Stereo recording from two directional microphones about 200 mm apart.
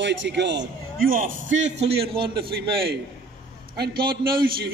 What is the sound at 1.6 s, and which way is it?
A man's voice, 30° right (ahead or behind).